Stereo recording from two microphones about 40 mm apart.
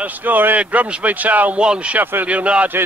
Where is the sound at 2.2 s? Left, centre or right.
Right.